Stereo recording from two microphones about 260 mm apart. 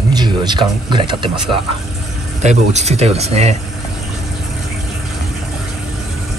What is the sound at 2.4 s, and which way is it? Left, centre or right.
Speech, right.